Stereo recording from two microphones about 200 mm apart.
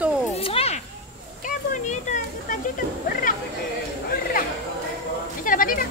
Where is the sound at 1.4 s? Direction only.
40° left (ahead or behind).